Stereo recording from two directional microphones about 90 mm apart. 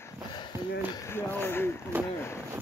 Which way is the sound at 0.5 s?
30° right (ahead or behind).